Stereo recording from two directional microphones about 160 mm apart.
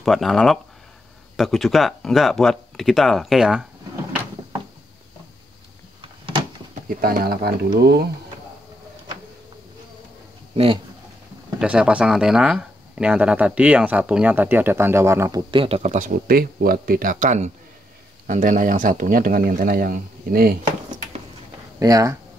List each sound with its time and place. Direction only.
0.0 s speech: centre (ahead or behind)
7.0 s speech: 70° right (ahead or behind)
10.5 s speech: 35° right (ahead or behind)
11.6 s speech: 5° right (ahead or behind)
15.5 s speech: 35° right (ahead or behind); by 20.5 s 65° right (ahead or behind)
21.7 s speech: 20° right (ahead or behind)